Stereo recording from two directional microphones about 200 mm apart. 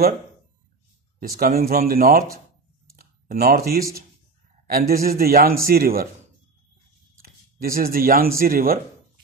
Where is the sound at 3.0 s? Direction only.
50° right (ahead or behind).